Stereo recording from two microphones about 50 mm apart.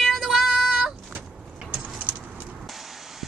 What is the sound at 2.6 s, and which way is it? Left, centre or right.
Vehicle, centre.